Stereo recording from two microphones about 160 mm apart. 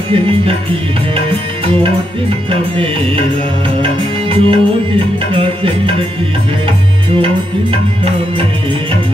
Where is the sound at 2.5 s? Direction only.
35° right (ahead or behind).